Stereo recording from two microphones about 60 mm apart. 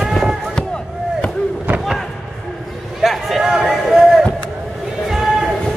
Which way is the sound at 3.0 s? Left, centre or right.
Centre.